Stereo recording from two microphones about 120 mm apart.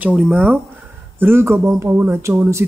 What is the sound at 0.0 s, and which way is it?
Speech, 10° right (ahead or behind).